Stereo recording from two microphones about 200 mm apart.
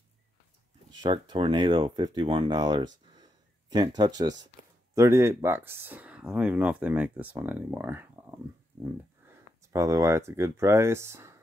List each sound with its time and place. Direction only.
0.9 s speech: 25° right (ahead or behind)
9.7 s speech: 15° right (ahead or behind)